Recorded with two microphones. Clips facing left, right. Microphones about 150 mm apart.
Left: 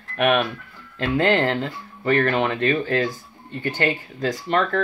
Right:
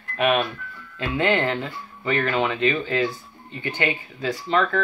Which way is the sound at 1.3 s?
40° left (ahead or behind).